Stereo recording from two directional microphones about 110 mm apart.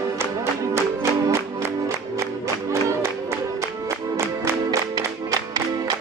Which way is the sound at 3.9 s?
25° right (ahead or behind).